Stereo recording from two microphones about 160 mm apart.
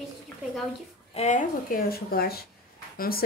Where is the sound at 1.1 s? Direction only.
45° left (ahead or behind); by 2.4 s 70° left (ahead or behind).